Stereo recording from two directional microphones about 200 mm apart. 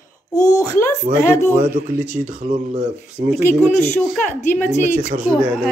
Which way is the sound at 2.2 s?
40° right (ahead or behind).